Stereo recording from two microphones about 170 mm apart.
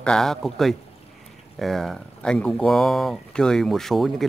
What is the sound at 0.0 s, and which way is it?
Speech, 5° left (ahead or behind).